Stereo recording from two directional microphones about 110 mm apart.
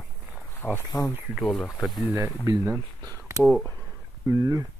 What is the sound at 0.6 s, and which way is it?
Speech, 15° left (ahead or behind).